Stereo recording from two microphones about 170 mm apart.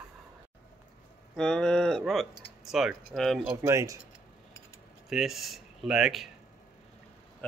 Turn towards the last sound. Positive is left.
turn(degrees=0)  # may be behind; listen again after turning